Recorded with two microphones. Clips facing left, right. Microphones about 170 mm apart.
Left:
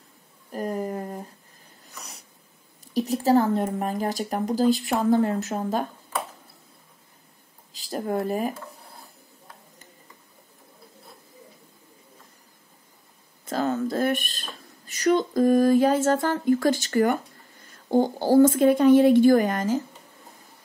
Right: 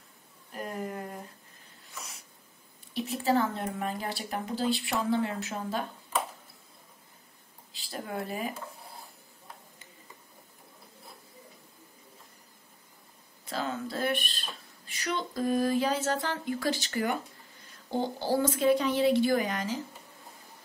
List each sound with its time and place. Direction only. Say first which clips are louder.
0.5 s a sound: left 8 dB; 40° left (ahead or behind)
1.9 s snort: left 1 dB; 35° left (ahead or behind)
2.9 s speech: left 7 dB; 40° left (ahead or behind)
7.7 s speech: left 9 dB; 40° left (ahead or behind)
13.5 s speech: left 9 dB; 45° left (ahead or behind)